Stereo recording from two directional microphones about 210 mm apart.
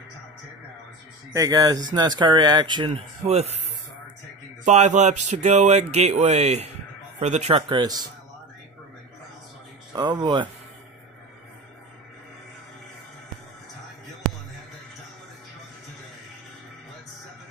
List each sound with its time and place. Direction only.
1.3 s speech: 15° right (ahead or behind); by 3.6 s 30° right (ahead or behind)
4.6 s speech: 35° right (ahead or behind)
9.9 s speech: 20° right (ahead or behind)